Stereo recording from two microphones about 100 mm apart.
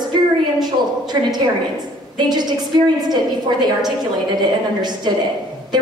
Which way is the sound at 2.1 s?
45° right (ahead or behind).